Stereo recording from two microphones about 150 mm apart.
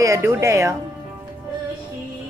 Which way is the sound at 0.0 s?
20° right (ahead or behind).